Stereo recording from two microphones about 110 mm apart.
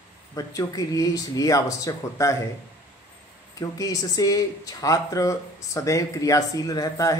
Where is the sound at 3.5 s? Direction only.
30° left (ahead or behind).